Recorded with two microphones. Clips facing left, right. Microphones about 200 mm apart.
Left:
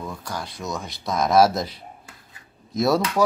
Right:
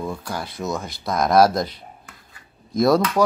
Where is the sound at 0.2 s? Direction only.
10° right (ahead or behind).